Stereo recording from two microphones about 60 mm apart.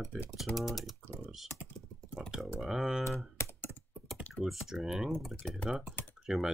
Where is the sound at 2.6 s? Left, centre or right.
Centre.